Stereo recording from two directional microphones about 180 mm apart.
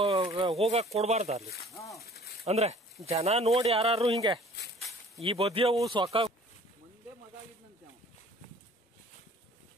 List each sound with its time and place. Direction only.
0.0 s a sound: 30° right (ahead or behind)
0.3 s speech: 30° right (ahead or behind)
1.7 s speech: 15° left (ahead or behind)
2.0 s a sound: 60° left (ahead or behind)
2.4 s speech: 35° right (ahead or behind)
5.2 s speech: 30° right (ahead or behind)